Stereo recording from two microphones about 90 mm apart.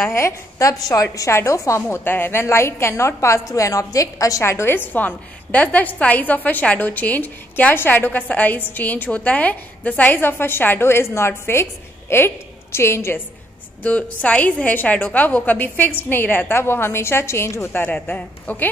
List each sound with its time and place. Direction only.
0.0 s a woman's voice: 30° left (ahead or behind)
1.9 s a woman's voice: 25° left (ahead or behind)
13.8 s a woman's voice: 15° left (ahead or behind)